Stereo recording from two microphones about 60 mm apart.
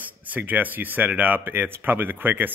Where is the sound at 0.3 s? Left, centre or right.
Right.